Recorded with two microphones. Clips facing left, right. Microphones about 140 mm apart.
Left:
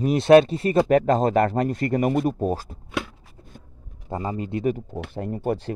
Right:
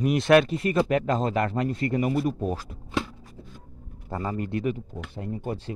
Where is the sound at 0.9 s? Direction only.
40° left (ahead or behind).